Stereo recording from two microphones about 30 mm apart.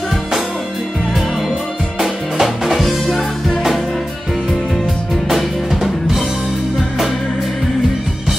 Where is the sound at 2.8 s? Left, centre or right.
Centre.